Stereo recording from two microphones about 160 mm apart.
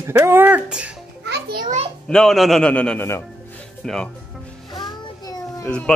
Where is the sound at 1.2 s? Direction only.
90° right.